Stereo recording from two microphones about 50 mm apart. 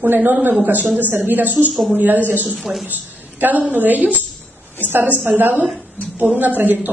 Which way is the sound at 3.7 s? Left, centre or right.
Right.